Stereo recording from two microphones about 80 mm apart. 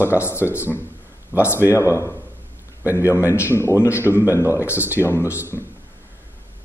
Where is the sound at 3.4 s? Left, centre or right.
Left.